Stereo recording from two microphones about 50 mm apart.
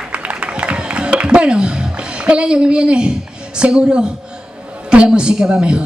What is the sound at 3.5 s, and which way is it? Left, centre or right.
A woman's voice, centre.